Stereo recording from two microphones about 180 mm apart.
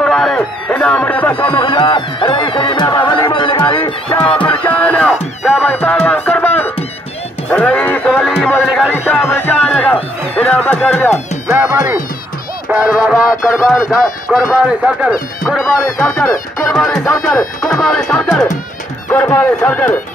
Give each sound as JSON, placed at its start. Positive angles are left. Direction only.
{"t": 0.0, "sound": "a sound", "side_deg": 5}
{"t": 1.4, "sound": "music", "side_deg": 25}
{"t": 4.5, "sound": "music", "side_deg": 10}
{"t": 5.1, "sound": "music", "side_deg": -5}
{"t": 5.7, "sound": "music", "side_deg": 10}
{"t": 8.1, "sound": "a sound", "side_deg": -5}
{"t": 8.6, "sound": "music", "side_deg": -5}
{"t": 8.9, "sound": "music", "side_deg": 10}
{"t": 11.5, "sound": "music", "side_deg": -10}
{"t": 13.2, "sound": "speech", "side_deg": 0}